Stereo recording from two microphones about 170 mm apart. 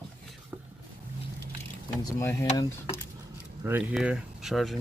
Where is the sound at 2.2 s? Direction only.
15° left (ahead or behind).